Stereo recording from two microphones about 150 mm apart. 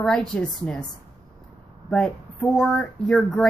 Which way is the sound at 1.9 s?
5° left (ahead or behind).